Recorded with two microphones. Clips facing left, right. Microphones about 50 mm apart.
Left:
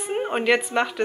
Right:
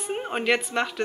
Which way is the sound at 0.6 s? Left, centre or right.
Left.